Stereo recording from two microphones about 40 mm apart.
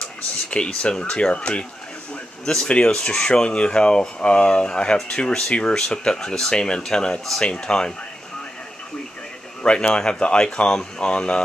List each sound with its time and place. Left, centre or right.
0.0 s a sound: left
1.0 s speech: left
2.4 s speech: centre
9.6 s speech: left